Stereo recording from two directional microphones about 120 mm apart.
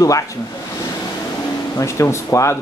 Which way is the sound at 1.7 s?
25° left (ahead or behind).